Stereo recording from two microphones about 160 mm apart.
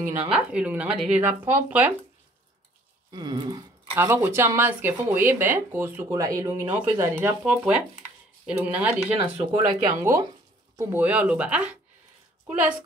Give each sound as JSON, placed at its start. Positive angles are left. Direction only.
{"t": 0.3, "sound": "speech", "side_deg": -5}
{"t": 3.1, "sound": "speech", "side_deg": -25}
{"t": 3.9, "sound": "speech", "side_deg": -15}
{"t": 9.2, "sound": "speech", "side_deg": -30}
{"t": 10.8, "sound": "speech", "side_deg": -10}